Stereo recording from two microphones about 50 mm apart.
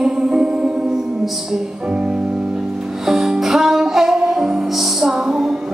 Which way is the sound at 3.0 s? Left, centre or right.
Centre.